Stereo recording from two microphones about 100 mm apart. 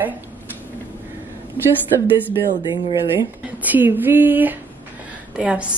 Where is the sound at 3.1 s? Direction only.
20° right (ahead or behind).